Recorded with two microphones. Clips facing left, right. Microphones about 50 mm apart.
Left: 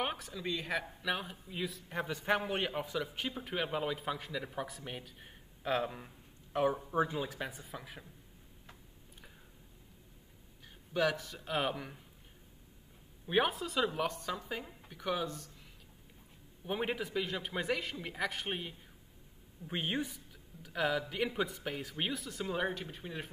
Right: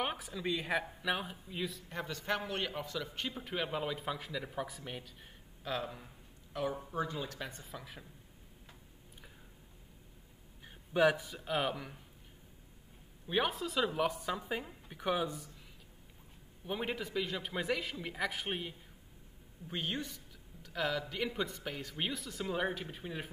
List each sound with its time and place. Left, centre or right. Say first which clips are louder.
0.0 s speech: even; centre
5.6 s speech: left 5 dB; left
5.9 s speech: left 2 dB; centre
10.6 s a sound: right 4 dB; centre
11.3 s speech: even; centre
13.3 s speech: left 2 dB; centre
16.6 s speech: left 2 dB; centre
19.7 s a woman's voice: left 3 dB; centre
20.6 s speech: left 2 dB; centre